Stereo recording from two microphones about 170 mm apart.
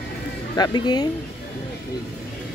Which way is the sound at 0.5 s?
25° left (ahead or behind).